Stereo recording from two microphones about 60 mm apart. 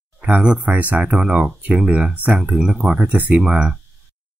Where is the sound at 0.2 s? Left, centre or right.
Centre.